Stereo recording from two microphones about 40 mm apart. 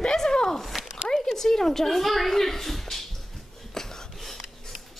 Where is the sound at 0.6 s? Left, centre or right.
Centre.